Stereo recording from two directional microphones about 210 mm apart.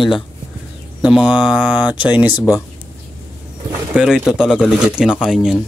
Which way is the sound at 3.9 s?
5° right (ahead or behind).